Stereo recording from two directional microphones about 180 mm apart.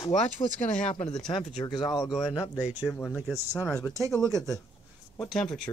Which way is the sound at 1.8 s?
25° left (ahead or behind).